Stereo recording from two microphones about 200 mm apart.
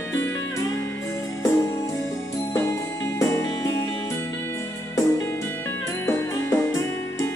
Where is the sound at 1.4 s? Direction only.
15° left (ahead or behind).